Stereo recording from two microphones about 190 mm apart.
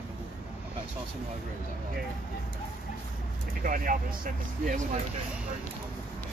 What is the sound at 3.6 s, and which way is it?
Speech, 45° right (ahead or behind).